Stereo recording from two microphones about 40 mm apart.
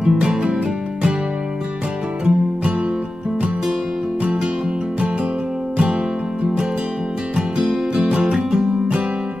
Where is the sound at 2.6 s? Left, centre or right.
Right.